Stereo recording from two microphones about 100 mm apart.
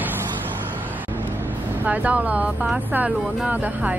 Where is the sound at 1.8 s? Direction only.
15° right (ahead or behind).